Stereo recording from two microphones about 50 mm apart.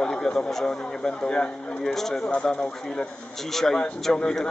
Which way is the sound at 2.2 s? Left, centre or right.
Left.